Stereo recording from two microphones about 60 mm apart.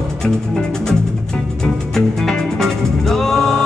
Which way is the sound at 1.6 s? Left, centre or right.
Centre.